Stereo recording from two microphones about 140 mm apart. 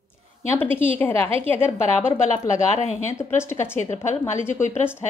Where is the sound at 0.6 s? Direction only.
15° left (ahead or behind).